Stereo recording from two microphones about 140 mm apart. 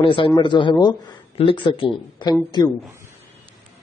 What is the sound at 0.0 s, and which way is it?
Speech, 40° left (ahead or behind).